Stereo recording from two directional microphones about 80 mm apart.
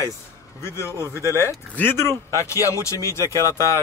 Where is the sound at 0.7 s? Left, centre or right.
Left.